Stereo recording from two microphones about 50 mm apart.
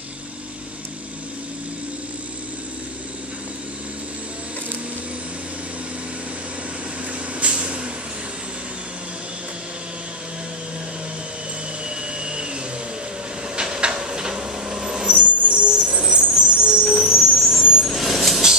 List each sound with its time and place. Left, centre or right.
7.5 s vehicle: centre
12.2 s vacuum cleaner: centre
13.6 s vehicle: centre